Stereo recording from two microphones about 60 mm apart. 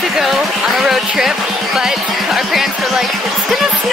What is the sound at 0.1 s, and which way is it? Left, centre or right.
Speech, centre.